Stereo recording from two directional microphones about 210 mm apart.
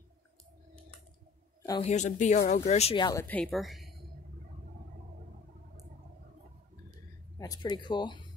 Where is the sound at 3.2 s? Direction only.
5° left (ahead or behind).